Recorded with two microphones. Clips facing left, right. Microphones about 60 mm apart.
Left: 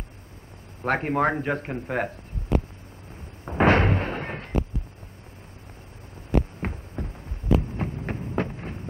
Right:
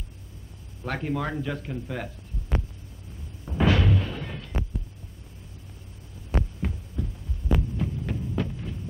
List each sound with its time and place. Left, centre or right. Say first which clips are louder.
0.8 s speech: left 6 dB; left
3.4 s a sound: left 4 dB; left
6.6 s heart sounds: even; left